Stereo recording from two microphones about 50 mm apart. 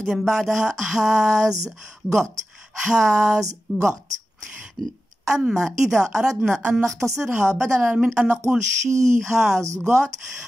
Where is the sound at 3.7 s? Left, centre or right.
Centre.